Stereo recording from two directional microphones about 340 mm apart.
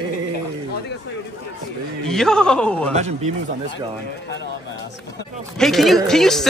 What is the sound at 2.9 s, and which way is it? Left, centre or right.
Speech, centre.